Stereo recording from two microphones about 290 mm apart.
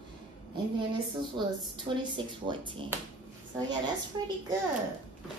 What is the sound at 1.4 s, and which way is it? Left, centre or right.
A woman's voice, centre.